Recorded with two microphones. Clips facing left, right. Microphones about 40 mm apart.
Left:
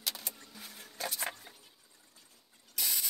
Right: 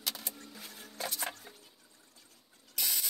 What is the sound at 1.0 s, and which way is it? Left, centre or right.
Music, centre.